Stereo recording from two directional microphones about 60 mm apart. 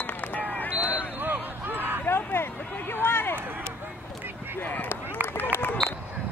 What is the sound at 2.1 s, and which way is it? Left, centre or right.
Speech, left.